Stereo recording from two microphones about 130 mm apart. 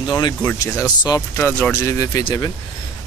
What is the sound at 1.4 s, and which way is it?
Speech, 20° left (ahead or behind).